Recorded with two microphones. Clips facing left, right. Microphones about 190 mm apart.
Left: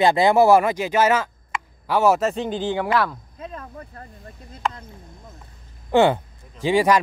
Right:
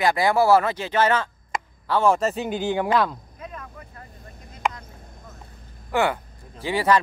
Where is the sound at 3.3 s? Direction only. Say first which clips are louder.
Left 3 dB; 30° left (ahead or behind).